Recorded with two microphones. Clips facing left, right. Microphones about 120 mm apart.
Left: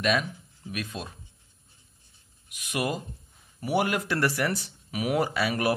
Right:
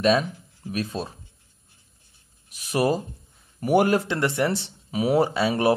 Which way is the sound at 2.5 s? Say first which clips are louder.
Right 7 dB; 35° right (ahead or behind).